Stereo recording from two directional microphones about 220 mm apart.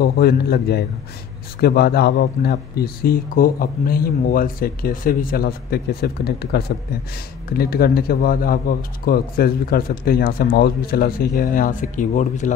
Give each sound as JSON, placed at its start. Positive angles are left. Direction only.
{"t": 0.0, "sound": "speech", "side_deg": 45}